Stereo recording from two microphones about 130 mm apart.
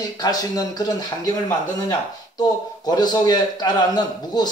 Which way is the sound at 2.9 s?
30° left (ahead or behind).